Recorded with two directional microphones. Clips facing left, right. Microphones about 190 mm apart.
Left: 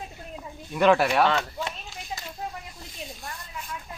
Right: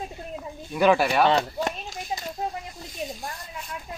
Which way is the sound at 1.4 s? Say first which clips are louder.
Right 5 dB; 40° right (ahead or behind).